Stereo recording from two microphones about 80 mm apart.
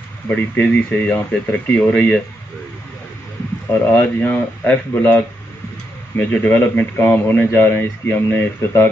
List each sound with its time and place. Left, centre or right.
0.3 s speech: centre
3.7 s speech: left